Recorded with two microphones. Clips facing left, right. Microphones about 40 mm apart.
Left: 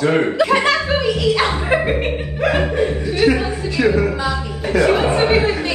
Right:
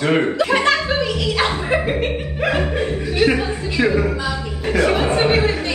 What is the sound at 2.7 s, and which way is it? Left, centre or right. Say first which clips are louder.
Chuckle: left 1 dB; right.